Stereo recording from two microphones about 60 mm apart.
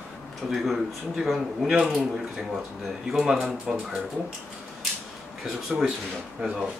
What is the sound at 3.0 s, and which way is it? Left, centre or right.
Speech, centre.